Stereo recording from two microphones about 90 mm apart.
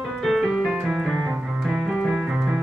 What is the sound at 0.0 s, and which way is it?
Music, centre (ahead or behind).